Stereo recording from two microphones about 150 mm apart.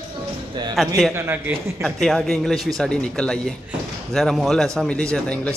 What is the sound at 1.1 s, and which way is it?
Speech, 15° right (ahead or behind).